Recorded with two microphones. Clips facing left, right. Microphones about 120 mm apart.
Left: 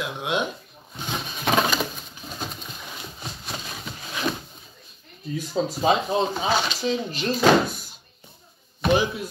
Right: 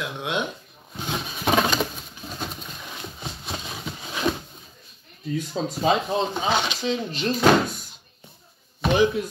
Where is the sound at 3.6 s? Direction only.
15° right (ahead or behind).